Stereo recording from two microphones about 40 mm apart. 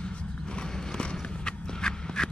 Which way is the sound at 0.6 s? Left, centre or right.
Left.